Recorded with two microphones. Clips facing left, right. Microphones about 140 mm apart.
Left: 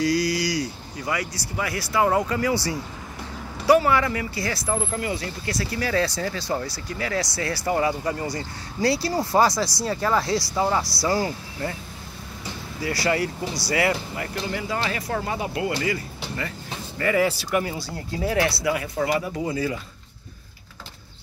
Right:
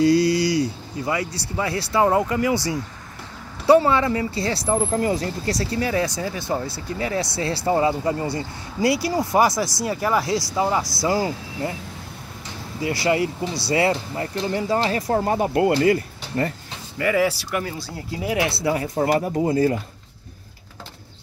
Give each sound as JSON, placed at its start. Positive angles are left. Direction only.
{"t": 0.0, "sound": "speech", "side_deg": -25}
{"t": 5.8, "sound": "speech", "side_deg": -20}
{"t": 12.8, "sound": "speech", "side_deg": -20}
{"t": 17.0, "sound": "speech", "side_deg": -5}
{"t": 18.6, "sound": "speech", "side_deg": -35}